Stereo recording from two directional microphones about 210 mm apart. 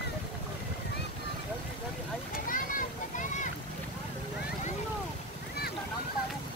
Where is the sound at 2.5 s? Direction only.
40° left (ahead or behind).